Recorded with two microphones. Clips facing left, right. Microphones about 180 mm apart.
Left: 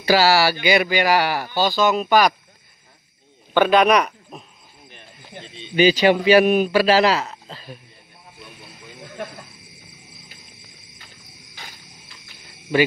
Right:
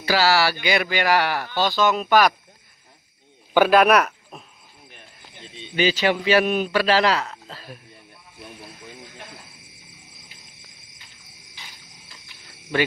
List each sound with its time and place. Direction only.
0.0 s speech: 10° left (ahead or behind)
3.5 s speech: 5° right (ahead or behind)
5.8 s a man's voice: 15° left (ahead or behind); by 7.8 s centre (ahead or behind)
11.6 s cricket: 45° left (ahead or behind)